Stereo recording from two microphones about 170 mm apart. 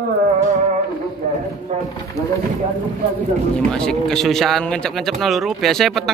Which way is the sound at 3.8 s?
Centre (ahead or behind).